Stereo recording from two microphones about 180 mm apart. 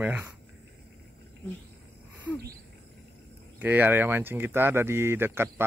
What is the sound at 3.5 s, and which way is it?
Speech, 10° right (ahead or behind).